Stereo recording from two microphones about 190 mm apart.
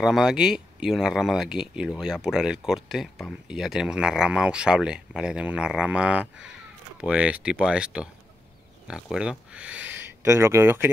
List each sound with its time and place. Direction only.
0.0 s speech: centre (ahead or behind)